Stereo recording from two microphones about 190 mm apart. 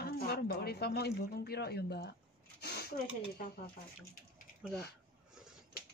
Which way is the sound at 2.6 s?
55° left (ahead or behind).